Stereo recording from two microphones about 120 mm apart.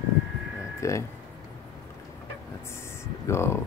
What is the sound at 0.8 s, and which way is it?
Speech, 25° left (ahead or behind).